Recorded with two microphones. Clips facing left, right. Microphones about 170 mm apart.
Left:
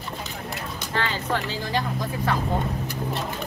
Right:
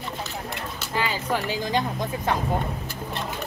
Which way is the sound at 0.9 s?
10° right (ahead or behind).